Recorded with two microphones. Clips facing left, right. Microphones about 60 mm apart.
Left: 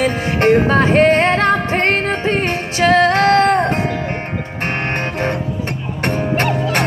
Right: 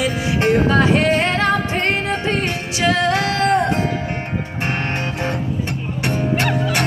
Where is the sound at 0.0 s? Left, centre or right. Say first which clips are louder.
Left 3 dB; left.